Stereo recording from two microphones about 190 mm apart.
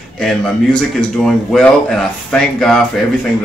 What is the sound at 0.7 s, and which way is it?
A man's voice, 5° left (ahead or behind).